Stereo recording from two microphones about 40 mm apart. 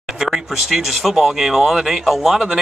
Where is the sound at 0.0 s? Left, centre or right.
Centre.